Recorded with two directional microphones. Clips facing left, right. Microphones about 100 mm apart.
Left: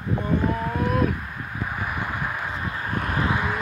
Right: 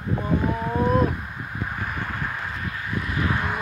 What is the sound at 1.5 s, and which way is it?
Vehicle, 5° left (ahead or behind).